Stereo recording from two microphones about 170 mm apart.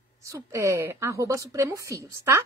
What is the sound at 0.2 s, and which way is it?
A woman's voice, 20° right (ahead or behind).